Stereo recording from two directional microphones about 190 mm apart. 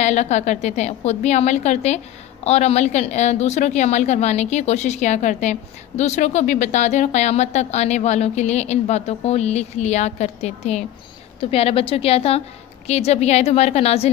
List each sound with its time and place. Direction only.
0.0 s a woman's voice: 35° left (ahead or behind)